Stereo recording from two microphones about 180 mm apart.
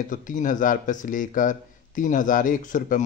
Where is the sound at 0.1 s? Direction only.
45° left (ahead or behind).